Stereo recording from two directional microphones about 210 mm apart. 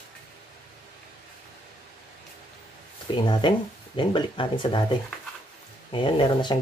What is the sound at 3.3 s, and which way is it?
Speech, 20° left (ahead or behind).